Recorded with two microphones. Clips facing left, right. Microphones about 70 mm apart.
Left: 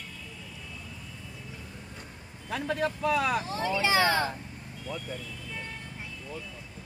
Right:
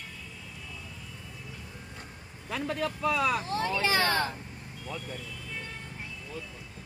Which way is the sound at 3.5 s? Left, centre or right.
Centre.